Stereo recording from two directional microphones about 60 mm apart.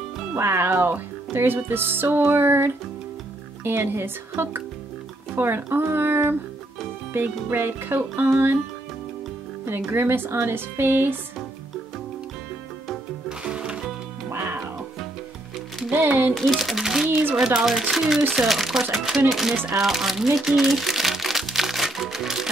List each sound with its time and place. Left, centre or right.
0.4 s speech: right
7.4 s speech: right
9.7 s speech: right
13.5 s music: centre
14.3 s music: right
15.9 s music: right
16.3 s speech: centre
17.1 s speech: right
17.6 s speech: centre
19.8 s crumpling: centre